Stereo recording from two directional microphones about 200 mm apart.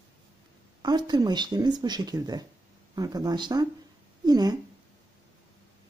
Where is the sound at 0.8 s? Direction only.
20° right (ahead or behind).